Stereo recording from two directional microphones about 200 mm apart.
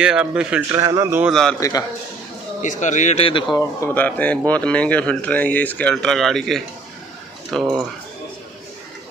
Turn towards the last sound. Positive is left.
turn(degrees=0)  # may be behind; listen again after turning